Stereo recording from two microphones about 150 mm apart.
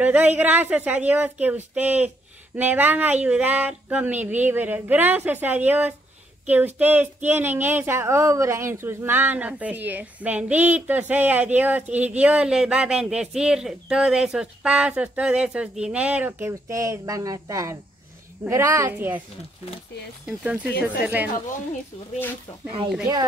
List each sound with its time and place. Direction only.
0.0 s speech: 10° right (ahead or behind)
20.2 s speech: 10° right (ahead or behind)